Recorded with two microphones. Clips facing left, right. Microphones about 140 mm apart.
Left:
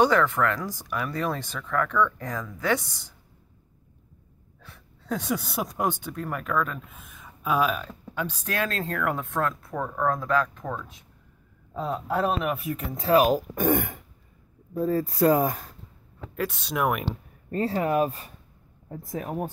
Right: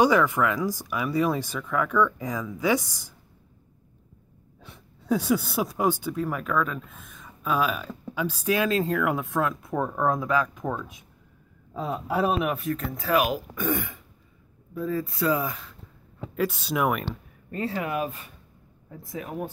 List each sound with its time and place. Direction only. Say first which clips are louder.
0.0 s speech: right 1 dB; 10° right (ahead or behind)
4.6 s gasp: right 2 dB; 20° right (ahead or behind)
5.1 s speech: right 5 dB; centre (ahead or behind)
12.5 s speech: right 2 dB; 10° left (ahead or behind)
12.9 s speech: left 5 dB; 30° left (ahead or behind)
13.6 s speech: left 4 dB; 50° left (ahead or behind)
14.7 s speech: left 3 dB; 40° left (ahead or behind)
16.3 s speech: right 2 dB; centre (ahead or behind)
17.5 s speech: left 4 dB; 35° left (ahead or behind)